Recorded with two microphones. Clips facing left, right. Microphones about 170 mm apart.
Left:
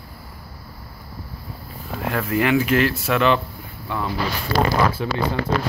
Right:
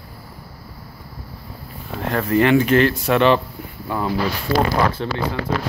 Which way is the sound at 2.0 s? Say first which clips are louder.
Right 4 dB; 5° left (ahead or behind).